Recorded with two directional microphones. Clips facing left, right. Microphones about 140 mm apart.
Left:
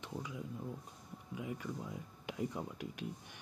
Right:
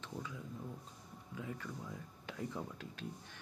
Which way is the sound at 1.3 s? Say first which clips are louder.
Left 3 dB; 15° left (ahead or behind).